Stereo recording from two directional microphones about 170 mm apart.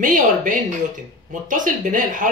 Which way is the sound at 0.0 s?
50° right (ahead or behind).